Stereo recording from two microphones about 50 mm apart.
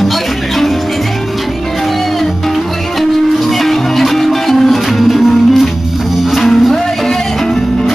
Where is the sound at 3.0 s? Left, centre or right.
Centre.